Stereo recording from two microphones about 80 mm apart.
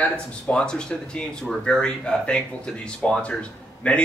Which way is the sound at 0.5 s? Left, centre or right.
Centre.